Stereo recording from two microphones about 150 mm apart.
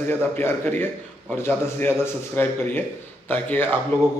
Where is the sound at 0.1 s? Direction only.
15° left (ahead or behind).